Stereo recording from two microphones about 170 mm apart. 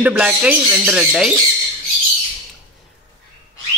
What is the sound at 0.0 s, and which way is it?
Speech, 5° right (ahead or behind).